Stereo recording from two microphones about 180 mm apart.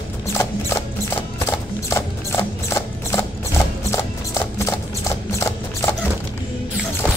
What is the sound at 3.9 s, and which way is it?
Clip-clop, 15° left (ahead or behind).